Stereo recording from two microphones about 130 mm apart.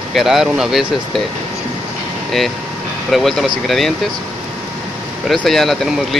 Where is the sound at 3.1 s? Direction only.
Centre (ahead or behind).